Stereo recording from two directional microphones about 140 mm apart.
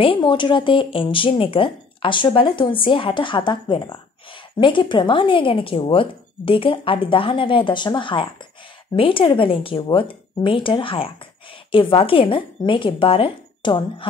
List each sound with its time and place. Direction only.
0.0 s speech: 35° left (ahead or behind)